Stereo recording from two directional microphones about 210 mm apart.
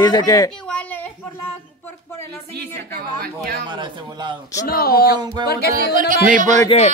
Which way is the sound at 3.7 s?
20° right (ahead or behind).